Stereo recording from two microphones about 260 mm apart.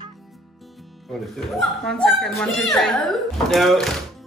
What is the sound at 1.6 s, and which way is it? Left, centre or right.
Speech, centre.